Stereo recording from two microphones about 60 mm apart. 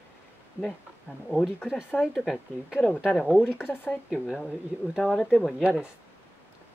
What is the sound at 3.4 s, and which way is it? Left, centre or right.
Speech, left.